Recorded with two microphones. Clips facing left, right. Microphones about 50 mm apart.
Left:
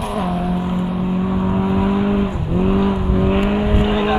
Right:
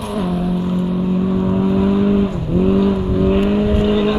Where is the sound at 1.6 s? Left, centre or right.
Centre.